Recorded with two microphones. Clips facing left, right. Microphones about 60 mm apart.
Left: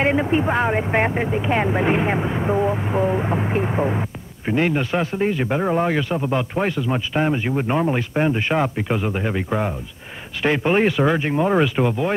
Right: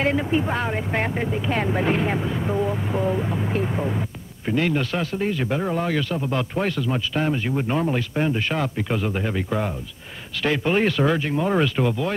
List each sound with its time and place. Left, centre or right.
0.0 s speech: left